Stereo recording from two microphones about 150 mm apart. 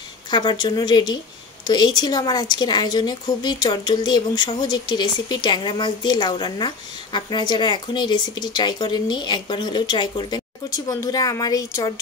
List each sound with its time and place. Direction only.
0.3 s a woman's voice: 30° left (ahead or behind)